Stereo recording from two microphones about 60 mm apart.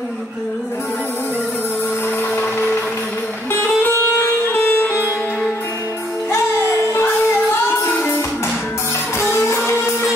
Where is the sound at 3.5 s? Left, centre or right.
Left.